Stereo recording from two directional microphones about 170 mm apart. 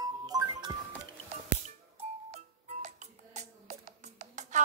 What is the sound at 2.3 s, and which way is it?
Music, 45° right (ahead or behind).